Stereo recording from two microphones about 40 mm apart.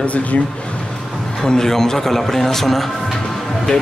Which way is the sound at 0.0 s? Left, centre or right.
Left.